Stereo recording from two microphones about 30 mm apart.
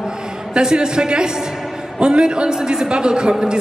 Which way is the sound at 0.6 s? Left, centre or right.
Right.